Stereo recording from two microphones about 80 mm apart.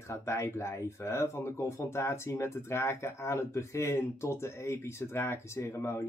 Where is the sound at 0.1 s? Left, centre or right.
Left.